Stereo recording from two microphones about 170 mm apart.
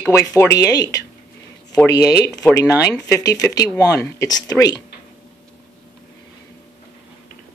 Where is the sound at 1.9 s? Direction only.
75° left (ahead or behind).